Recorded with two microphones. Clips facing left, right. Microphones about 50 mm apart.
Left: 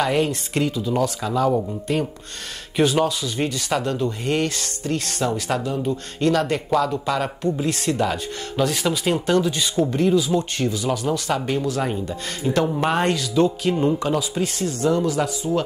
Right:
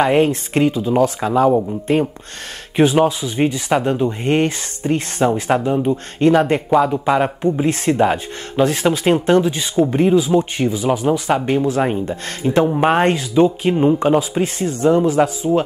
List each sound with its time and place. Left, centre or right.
0.0 s speech: right